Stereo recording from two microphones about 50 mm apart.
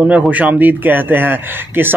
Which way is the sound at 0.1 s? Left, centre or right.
Right.